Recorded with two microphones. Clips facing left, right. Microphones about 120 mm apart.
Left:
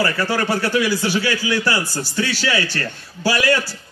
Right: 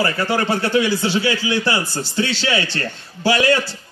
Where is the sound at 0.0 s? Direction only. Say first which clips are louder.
Right 1 dB; 20° right (ahead or behind).